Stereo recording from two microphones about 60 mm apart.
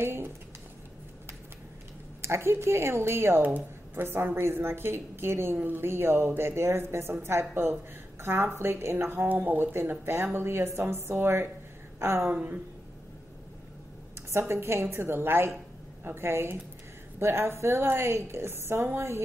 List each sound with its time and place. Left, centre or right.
0.0 s speech: right
2.2 s a woman's voice: right
14.5 s a woman's voice: right